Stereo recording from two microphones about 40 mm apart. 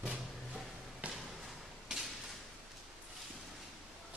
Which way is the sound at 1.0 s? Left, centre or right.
Right.